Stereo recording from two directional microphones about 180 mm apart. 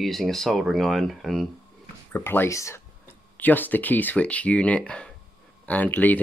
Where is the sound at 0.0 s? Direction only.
Centre (ahead or behind).